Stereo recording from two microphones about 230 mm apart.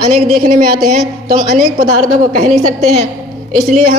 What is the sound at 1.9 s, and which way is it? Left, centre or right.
A woman's voice, right.